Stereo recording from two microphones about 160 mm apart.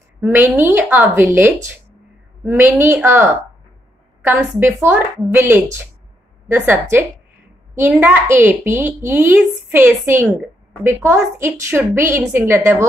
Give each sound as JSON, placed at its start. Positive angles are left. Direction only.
{"t": 0.2, "sound": "a woman's voice", "side_deg": -15}